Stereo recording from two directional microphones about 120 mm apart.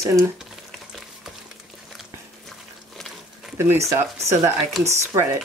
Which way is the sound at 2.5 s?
Centre (ahead or behind).